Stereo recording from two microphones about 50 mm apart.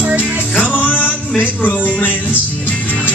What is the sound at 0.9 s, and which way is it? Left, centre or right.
Music, left.